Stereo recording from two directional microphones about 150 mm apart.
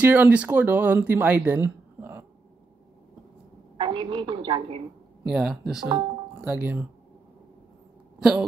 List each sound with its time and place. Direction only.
0.0 s speech: 10° right (ahead or behind)
3.7 s a woman's voice: 30° right (ahead or behind)
5.2 s speech: 5° right (ahead or behind)
8.2 s speech: 5° right (ahead or behind)